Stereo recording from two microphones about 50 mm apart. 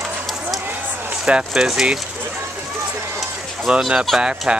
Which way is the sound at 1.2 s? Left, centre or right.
Centre.